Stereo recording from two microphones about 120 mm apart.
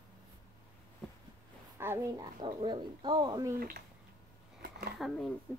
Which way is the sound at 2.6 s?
40° right (ahead or behind).